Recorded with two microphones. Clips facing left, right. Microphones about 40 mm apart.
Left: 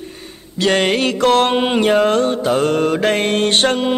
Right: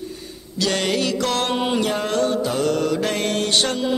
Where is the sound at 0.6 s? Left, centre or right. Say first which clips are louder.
Left 6 dB; left.